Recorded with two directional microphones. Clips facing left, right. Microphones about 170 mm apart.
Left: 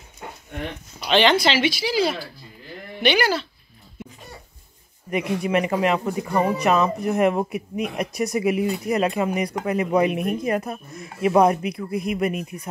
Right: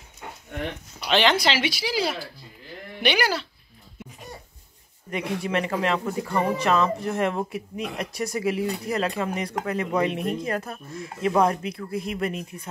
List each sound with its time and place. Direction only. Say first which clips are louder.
0.9 s speech: left 3 dB; centre (ahead or behind)
5.1 s speech: left 4 dB; 15° left (ahead or behind)